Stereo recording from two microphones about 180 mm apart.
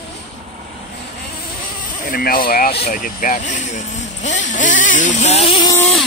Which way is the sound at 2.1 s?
55° left (ahead or behind).